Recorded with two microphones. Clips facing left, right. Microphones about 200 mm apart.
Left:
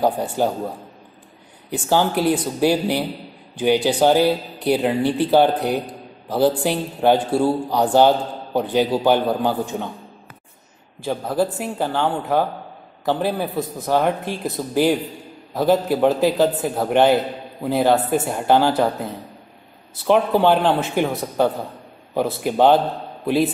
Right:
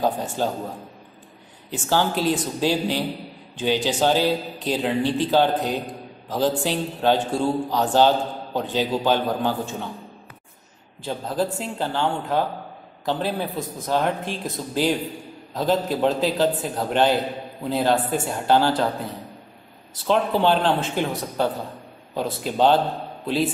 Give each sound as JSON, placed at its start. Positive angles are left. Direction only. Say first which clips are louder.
{"t": 0.0, "sound": "speech", "louder": "left 4 dB", "side_deg": 15}
{"t": 1.7, "sound": "speech", "louder": "left 3 dB", "side_deg": 15}
{"t": 11.1, "sound": "speech", "louder": "left 4 dB", "side_deg": 10}
{"t": 20.1, "sound": "speech", "louder": "left 4 dB", "side_deg": 15}